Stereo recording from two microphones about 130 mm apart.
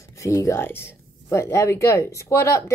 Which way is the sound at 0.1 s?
25° left (ahead or behind).